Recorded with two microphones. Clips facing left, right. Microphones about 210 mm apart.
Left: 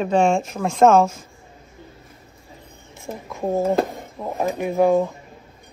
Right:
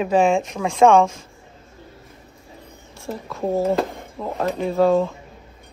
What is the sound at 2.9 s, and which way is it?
Speech, 15° left (ahead or behind).